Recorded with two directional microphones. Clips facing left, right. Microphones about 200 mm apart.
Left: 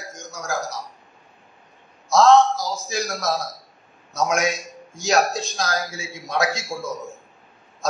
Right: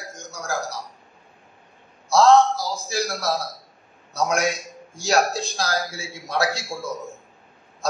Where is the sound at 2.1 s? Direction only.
35° right (ahead or behind).